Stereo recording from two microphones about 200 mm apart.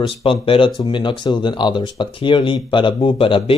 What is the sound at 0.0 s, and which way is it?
Speech, 25° left (ahead or behind).